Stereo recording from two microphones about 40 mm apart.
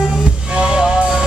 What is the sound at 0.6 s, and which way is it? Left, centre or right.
Music, centre.